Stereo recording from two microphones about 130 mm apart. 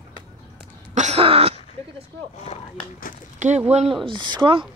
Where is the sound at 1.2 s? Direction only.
50° right (ahead or behind).